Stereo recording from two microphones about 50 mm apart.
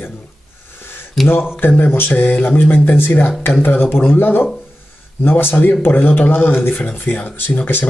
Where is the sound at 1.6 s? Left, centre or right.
Left.